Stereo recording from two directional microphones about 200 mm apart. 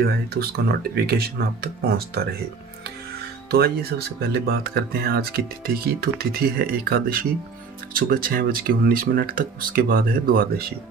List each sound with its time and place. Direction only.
0.0 s speech: 50° right (ahead or behind)
3.4 s speech: 50° right (ahead or behind)